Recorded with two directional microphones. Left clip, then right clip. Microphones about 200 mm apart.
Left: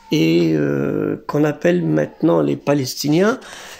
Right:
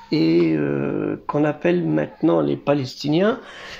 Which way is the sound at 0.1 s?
40° left (ahead or behind).